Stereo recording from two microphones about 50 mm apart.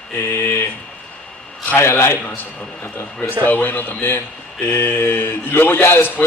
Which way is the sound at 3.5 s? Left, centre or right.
Left.